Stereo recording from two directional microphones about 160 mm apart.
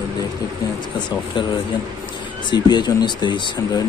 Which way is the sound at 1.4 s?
30° left (ahead or behind).